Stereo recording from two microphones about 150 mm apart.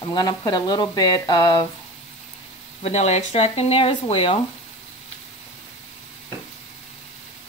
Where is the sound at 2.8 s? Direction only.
45° left (ahead or behind).